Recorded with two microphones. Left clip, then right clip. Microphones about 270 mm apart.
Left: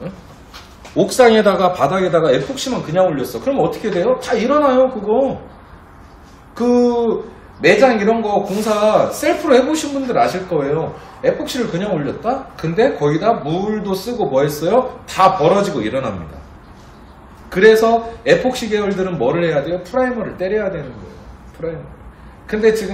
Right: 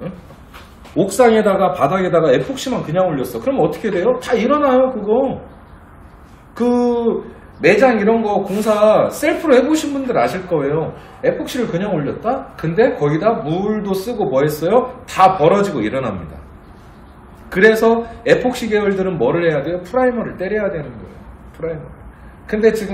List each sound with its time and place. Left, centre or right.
1.1 s speech: centre
6.5 s a sound: centre
7.6 s speech: centre
17.5 s speech: centre